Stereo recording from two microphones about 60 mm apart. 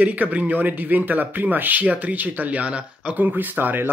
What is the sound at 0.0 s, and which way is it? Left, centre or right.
Speech, right.